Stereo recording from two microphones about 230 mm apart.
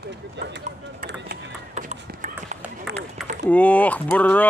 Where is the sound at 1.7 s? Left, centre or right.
Right.